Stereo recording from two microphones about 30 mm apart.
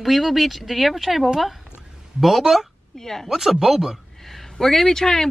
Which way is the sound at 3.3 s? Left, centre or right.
Centre.